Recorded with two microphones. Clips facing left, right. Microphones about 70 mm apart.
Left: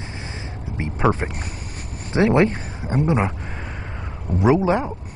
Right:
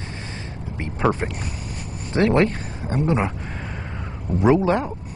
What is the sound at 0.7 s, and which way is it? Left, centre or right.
Speech, centre.